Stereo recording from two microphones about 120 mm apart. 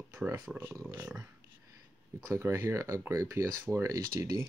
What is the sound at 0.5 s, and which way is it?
Speech, 20° right (ahead or behind).